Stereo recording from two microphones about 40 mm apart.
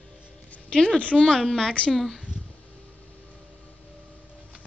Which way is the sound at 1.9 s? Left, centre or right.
Centre.